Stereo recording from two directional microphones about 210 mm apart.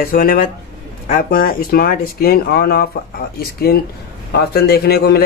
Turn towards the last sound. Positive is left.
turn(degrees=50)  # may be behind; listen again after turning